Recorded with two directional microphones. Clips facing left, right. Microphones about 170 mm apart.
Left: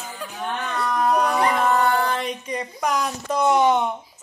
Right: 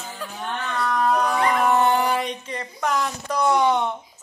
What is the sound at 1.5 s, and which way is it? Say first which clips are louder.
Howl: right 1 dB; 15° right (ahead or behind).